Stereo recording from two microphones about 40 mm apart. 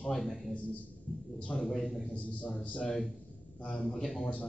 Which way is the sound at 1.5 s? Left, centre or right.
Centre.